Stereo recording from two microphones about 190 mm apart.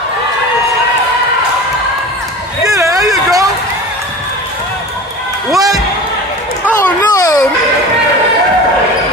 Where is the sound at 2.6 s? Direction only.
20° right (ahead or behind).